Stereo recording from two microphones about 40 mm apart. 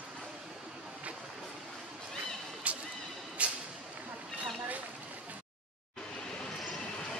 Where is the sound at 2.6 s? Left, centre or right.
Right.